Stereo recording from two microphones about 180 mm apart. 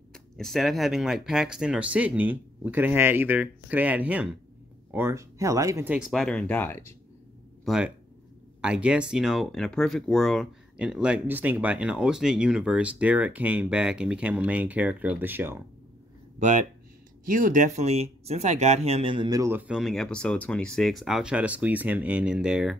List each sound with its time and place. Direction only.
0.1 s speech: centre (ahead or behind)
7.6 s speech: centre (ahead or behind)
16.3 s speech: 40° right (ahead or behind); by 19.6 s 20° right (ahead or behind)
19.7 s speech: centre (ahead or behind)